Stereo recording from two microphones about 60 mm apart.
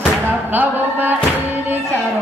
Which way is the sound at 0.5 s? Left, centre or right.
Right.